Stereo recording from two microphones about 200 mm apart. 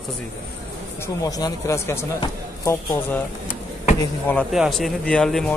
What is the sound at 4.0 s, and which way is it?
Speech, 10° left (ahead or behind).